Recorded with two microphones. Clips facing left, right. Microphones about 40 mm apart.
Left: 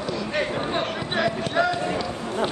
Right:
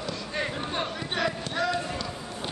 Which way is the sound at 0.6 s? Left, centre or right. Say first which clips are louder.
Left 5 dB; centre.